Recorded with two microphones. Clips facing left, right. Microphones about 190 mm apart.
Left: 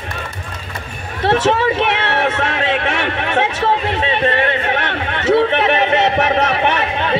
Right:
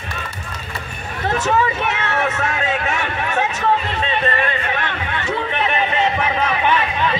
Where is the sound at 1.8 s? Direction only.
60° left (ahead or behind).